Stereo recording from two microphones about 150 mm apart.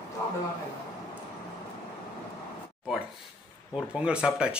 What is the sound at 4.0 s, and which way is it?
Speech, 5° right (ahead or behind).